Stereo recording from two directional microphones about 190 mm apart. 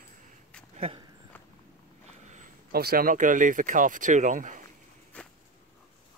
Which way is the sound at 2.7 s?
55° right (ahead or behind).